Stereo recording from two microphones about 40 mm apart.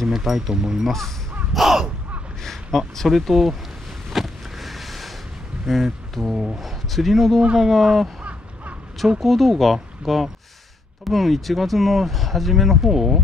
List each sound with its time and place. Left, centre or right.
0.1 s speech: centre
0.6 s speech: centre
0.8 s speech: centre
1.5 s crow: centre
2.4 s a sound: centre
3.0 s speech: centre
4.1 s a sound: centre
5.7 s speech: centre
6.3 s speech: centre
6.6 s a man's voice: centre
8.2 s crow: right
9.2 s speech: centre